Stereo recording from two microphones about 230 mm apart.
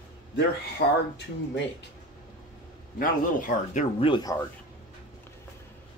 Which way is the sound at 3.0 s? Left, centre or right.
Left.